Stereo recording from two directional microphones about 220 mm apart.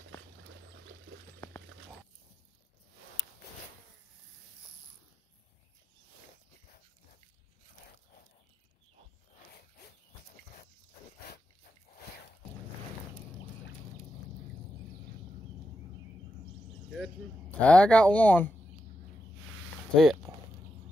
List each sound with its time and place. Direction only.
16.9 s speech: 5° left (ahead or behind)
20.0 s speech: centre (ahead or behind)